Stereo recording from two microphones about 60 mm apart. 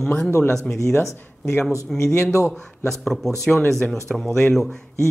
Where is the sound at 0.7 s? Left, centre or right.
Left.